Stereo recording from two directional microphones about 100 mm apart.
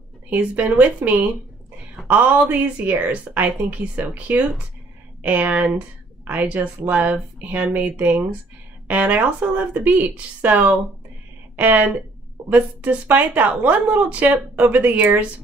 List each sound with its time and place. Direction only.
0.3 s speech: 15° right (ahead or behind)